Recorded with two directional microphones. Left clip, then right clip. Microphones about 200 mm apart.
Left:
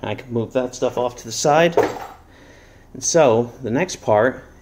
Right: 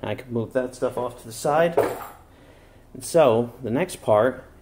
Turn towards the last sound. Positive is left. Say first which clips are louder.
# left 3 dB
turn(degrees=5)  # may be behind; listen again after turning